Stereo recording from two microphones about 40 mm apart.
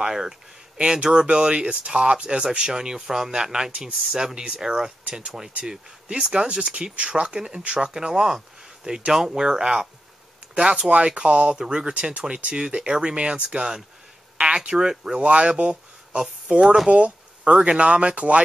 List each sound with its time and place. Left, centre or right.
0.0 s speech: centre
0.7 s speech: right
5.6 s speech: right
7.3 s speech: centre
7.6 s speech: right
7.9 s speech: centre
10.5 s speech: right
11.9 s speech: right
15.1 s speech: right
16.9 s a sound: right
17.7 s speech: right